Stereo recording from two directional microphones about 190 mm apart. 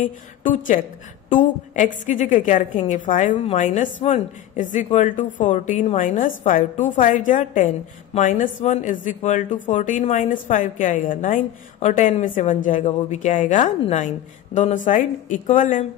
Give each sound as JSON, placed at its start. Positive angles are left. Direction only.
{"t": 1.3, "sound": "a woman's voice", "side_deg": 45}